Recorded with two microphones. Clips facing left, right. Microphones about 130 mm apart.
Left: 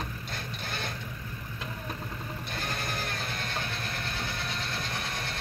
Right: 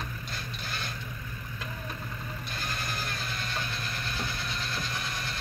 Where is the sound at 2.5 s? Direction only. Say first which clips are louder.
Left 2 dB; 60° left (ahead or behind).